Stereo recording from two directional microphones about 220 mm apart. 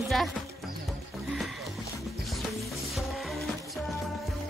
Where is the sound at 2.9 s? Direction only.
Centre (ahead or behind).